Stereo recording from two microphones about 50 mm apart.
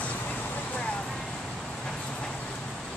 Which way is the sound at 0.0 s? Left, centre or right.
Left.